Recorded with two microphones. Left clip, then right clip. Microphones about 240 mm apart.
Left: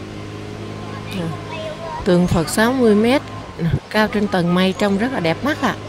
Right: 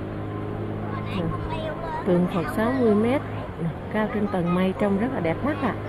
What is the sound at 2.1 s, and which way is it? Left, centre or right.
Speech, left.